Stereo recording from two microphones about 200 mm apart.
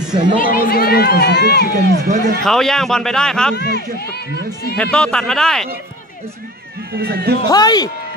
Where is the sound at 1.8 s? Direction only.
50° right (ahead or behind).